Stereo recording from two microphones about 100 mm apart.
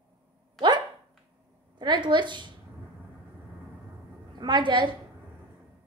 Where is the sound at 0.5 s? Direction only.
50° right (ahead or behind).